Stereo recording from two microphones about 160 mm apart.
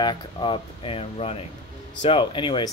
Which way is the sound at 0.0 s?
30° left (ahead or behind).